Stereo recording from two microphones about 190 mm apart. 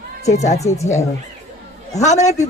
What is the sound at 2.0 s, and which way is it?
Speech, 40° left (ahead or behind).